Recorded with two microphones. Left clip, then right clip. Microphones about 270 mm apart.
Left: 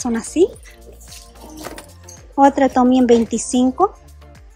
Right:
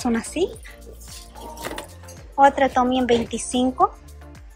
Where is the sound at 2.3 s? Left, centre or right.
Left.